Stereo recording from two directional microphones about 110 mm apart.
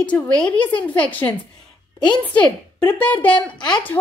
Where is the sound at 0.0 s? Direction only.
10° left (ahead or behind).